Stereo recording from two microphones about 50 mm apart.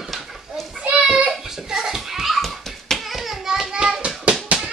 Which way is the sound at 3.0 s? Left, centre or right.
Centre.